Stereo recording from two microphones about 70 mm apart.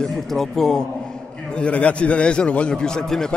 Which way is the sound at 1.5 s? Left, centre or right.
Centre.